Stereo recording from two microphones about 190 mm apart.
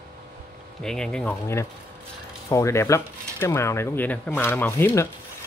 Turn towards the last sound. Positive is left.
turn(degrees=10)  # may be behind; listen again after turning